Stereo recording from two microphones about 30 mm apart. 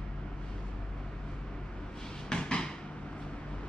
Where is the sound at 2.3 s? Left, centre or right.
Left.